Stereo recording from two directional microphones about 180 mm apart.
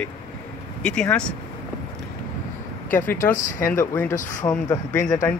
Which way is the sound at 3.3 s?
50° left (ahead or behind).